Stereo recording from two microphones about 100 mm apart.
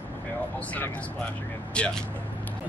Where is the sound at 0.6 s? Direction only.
15° left (ahead or behind).